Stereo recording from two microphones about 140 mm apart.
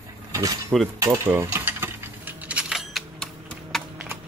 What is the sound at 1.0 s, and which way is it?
Speech, 20° right (ahead or behind).